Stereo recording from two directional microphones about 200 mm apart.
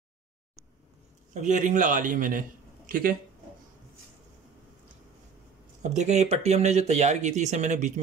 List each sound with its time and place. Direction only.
1.3 s speech: 40° right (ahead or behind)
5.8 s speech: 35° right (ahead or behind)